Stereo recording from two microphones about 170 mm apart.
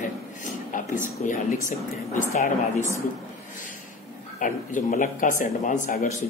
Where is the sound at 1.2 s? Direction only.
50° left (ahead or behind).